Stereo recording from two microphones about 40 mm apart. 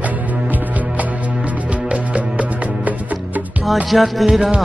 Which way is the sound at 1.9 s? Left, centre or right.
Right.